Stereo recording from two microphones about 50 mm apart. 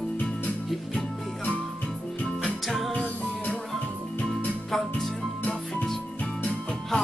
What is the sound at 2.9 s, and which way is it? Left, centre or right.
Music, left.